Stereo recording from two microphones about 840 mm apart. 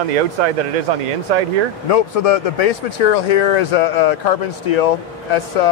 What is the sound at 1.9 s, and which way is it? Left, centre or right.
Speech, left.